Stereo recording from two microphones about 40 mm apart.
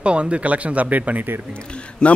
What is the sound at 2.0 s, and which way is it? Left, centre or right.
Speech, left.